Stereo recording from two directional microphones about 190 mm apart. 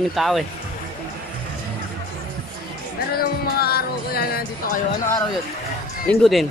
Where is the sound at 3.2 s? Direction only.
55° left (ahead or behind).